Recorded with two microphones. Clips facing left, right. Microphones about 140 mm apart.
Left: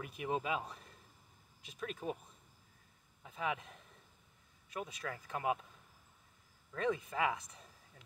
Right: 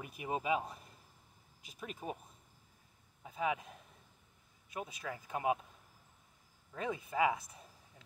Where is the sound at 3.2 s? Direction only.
25° right (ahead or behind).